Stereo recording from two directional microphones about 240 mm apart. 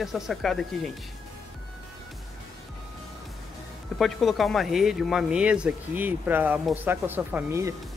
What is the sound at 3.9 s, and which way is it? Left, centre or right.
Speech, centre.